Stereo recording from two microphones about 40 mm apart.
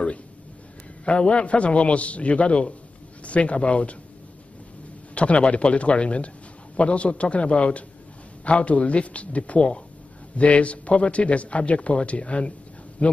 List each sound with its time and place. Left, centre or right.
1.0 s a man's voice: left
5.1 s a man's voice: left